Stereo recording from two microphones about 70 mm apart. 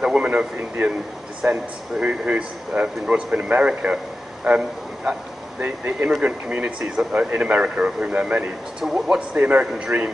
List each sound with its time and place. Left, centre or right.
0.0 s a man's voice: centre
8.8 s a man's voice: centre